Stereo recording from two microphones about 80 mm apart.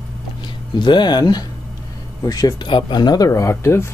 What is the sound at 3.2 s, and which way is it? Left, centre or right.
Speech, left.